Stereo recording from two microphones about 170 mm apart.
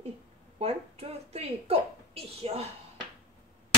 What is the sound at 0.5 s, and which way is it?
A woman's voice, 35° right (ahead or behind).